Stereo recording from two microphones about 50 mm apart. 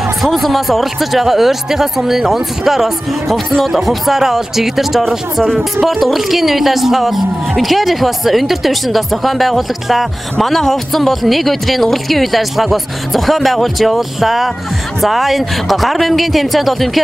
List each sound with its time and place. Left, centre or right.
0.0 s speech: centre